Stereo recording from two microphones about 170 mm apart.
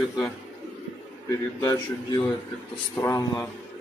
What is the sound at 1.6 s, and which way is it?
A man's voice, 20° left (ahead or behind).